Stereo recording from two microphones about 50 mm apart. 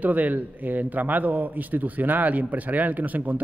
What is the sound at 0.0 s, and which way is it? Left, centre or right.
A man's voice, right.